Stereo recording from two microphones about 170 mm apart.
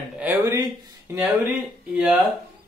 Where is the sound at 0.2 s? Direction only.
10° right (ahead or behind).